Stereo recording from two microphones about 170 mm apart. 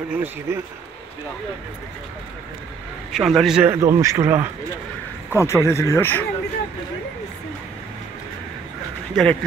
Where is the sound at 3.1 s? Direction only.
Centre (ahead or behind).